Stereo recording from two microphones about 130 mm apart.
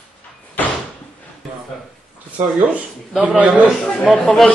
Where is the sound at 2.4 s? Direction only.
5° right (ahead or behind).